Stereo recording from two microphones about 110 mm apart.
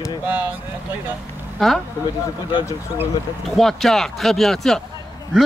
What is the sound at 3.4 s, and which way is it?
Speech, centre (ahead or behind).